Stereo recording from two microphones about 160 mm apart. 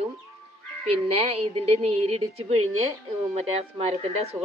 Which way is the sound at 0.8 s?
40° right (ahead or behind).